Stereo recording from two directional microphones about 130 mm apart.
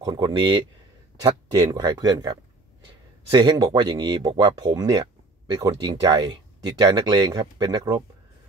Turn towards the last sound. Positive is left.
turn(degrees=-30)  # may be behind; listen again after turning